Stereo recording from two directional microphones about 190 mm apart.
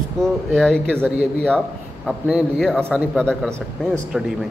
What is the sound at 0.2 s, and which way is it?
A man's voice, 5° left (ahead or behind).